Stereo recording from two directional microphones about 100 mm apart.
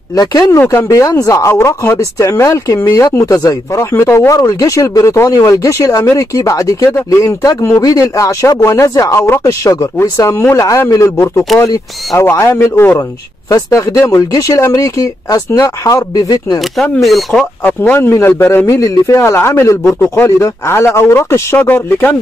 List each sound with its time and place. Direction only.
0.1 s speech: 40° left (ahead or behind)
0.5 s speech: 25° left (ahead or behind)
4.4 s speech: 35° left (ahead or behind)
13.5 s speech: 35° left (ahead or behind)
16.7 s speech: centre (ahead or behind)
17.9 s speech: 25° left (ahead or behind)